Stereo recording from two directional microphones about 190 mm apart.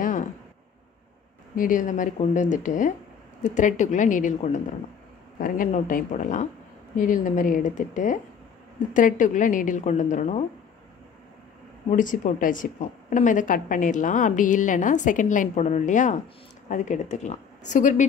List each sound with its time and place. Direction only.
0.0 s a sound: 45° left (ahead or behind)
1.5 s a woman's voice: 45° left (ahead or behind)
11.9 s a woman's voice: 40° left (ahead or behind)